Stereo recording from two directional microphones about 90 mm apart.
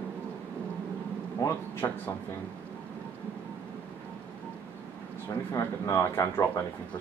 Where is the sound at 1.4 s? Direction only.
35° left (ahead or behind).